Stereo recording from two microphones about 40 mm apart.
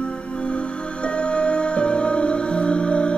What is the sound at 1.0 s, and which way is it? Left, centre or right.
Music, left.